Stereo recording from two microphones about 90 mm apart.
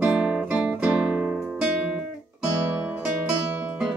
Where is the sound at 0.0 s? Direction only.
10° right (ahead or behind).